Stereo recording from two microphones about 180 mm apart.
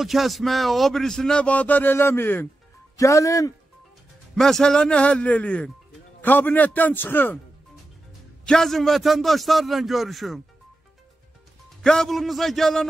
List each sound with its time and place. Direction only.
0.0 s a man's voice: centre (ahead or behind); by 3.5 s 15° left (ahead or behind)
4.4 s a man's voice: 5° left (ahead or behind)
8.5 s speech: centre (ahead or behind)
11.8 s speech: 5° left (ahead or behind)